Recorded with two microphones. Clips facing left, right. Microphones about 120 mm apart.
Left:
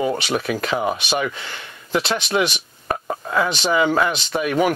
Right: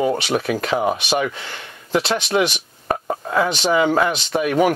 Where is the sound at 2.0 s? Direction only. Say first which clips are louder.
Right 1 dB; 60° right (ahead or behind).